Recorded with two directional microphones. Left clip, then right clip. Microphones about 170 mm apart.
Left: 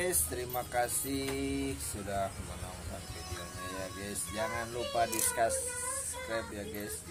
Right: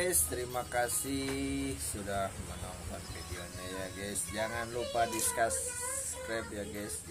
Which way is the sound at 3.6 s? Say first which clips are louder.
Even; 5° left (ahead or behind).